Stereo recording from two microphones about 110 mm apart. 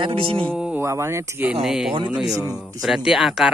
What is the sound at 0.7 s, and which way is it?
Speech, 25° right (ahead or behind).